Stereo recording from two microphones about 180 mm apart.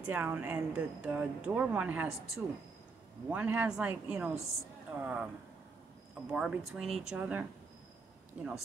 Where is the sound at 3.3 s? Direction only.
10° right (ahead or behind).